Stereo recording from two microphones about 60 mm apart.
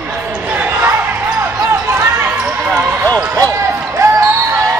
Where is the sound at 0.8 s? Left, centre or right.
Right.